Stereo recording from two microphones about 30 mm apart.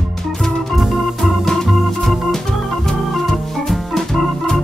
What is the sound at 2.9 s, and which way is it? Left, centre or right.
Organ, centre.